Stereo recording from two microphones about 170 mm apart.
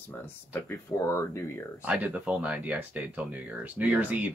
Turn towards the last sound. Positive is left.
turn(degrees=-10)  # may be behind; listen again after turning